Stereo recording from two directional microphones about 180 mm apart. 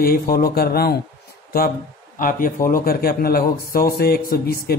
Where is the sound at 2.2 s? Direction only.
50° left (ahead or behind).